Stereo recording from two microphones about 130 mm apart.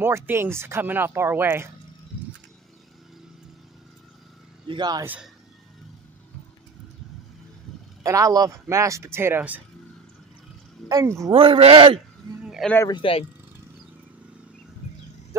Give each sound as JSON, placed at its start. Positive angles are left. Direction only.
{"t": 0.0, "sound": "speech", "side_deg": -20}
{"t": 4.6, "sound": "a man's voice", "side_deg": -35}
{"t": 5.0, "sound": "speech", "side_deg": -10}
{"t": 8.0, "sound": "speech", "side_deg": -25}
{"t": 10.9, "sound": "speech", "side_deg": -25}
{"t": 11.3, "sound": "speech", "side_deg": -45}
{"t": 12.8, "sound": "speech", "side_deg": 40}